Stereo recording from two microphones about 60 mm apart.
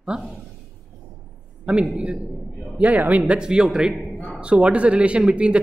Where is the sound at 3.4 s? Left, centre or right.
Centre.